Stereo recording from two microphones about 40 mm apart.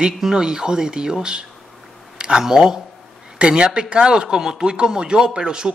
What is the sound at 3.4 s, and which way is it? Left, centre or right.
Speech, right.